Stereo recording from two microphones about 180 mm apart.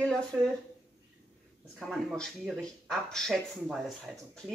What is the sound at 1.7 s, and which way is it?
Speech, centre (ahead or behind).